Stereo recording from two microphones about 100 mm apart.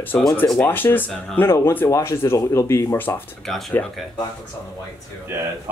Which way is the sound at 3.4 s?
5° left (ahead or behind).